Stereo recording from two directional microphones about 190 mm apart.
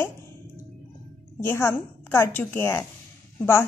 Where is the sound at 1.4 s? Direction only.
10° left (ahead or behind).